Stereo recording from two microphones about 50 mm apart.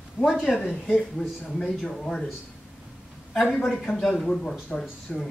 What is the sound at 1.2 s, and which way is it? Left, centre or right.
A man's voice, centre.